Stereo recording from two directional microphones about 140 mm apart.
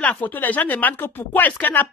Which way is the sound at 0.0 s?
10° left (ahead or behind).